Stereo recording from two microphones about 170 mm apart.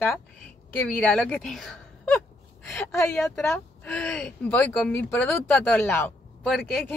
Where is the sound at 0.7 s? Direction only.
10° left (ahead or behind).